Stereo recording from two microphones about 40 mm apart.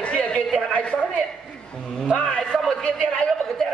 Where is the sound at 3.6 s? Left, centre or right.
Centre.